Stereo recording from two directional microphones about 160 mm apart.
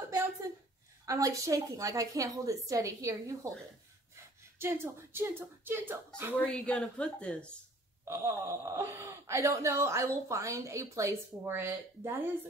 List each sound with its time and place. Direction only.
1.0 s a woman's voice: 20° right (ahead or behind)
4.6 s speech: 15° right (ahead or behind)
6.4 s a woman's voice: 5° left (ahead or behind)
8.0 s speech: 15° right (ahead or behind)